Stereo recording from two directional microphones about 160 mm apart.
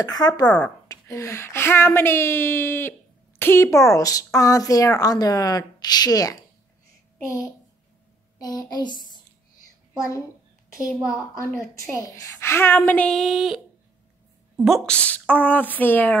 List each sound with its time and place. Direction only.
0.0 s a woman's voice: 25° left (ahead or behind)
8.4 s a woman's voice: 25° left (ahead or behind)
10.9 s a woman's voice: 5° right (ahead or behind)
11.7 s speech: 20° left (ahead or behind); by 13.6 s centre (ahead or behind)
14.6 s speech: 5° left (ahead or behind)